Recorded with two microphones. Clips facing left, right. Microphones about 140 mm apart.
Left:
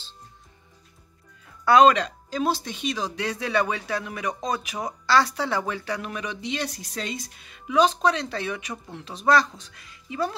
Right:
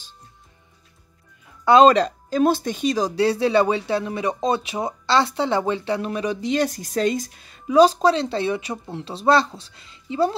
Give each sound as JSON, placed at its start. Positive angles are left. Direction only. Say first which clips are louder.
{"t": 1.6, "sound": "music", "louder": "right 3 dB", "side_deg": -25}
{"t": 1.9, "sound": "speech", "louder": "right 4 dB", "side_deg": -40}